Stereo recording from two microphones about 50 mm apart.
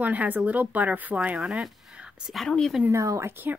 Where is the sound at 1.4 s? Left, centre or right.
Centre.